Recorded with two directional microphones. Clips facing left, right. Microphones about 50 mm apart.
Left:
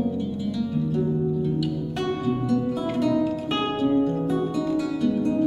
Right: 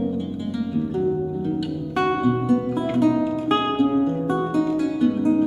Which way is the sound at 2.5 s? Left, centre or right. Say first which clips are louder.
Right 3 dB; right.